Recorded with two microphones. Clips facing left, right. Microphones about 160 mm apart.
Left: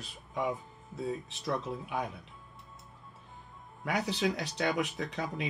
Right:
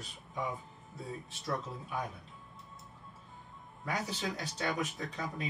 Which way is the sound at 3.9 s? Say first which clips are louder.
Left 6 dB; 70° left (ahead or behind).